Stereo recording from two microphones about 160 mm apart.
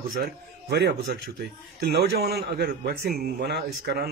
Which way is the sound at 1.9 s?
85° right.